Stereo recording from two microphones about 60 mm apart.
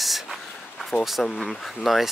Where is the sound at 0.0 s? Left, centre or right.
Centre.